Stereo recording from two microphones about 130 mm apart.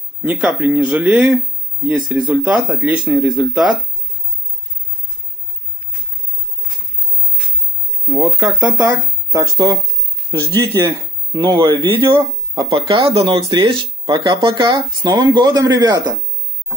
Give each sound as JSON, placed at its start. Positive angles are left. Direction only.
{"t": 0.2, "sound": "speech", "side_deg": -10}
{"t": 8.1, "sound": "speech", "side_deg": -5}
{"t": 8.6, "sound": "speech", "side_deg": -15}
{"t": 11.5, "sound": "speech", "side_deg": -40}
{"t": 12.0, "sound": "speech", "side_deg": -20}
{"t": 13.1, "sound": "speech", "side_deg": -45}